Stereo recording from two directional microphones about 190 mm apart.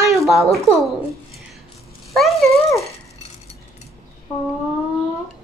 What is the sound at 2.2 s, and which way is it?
Speech, centre (ahead or behind).